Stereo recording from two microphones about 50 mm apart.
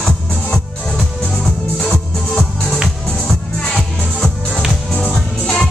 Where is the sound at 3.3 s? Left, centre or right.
Centre.